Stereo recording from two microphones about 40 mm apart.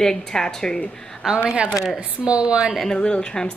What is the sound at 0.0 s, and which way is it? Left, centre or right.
Speech, centre.